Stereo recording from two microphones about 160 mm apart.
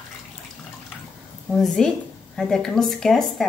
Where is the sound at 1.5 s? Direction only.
Centre (ahead or behind).